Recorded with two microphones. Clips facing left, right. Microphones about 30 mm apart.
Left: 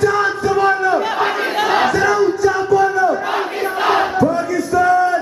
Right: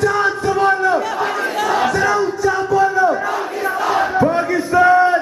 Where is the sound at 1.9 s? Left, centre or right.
Centre.